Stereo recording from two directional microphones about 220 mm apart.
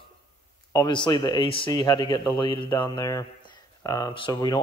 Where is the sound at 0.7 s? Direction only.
20° left (ahead or behind).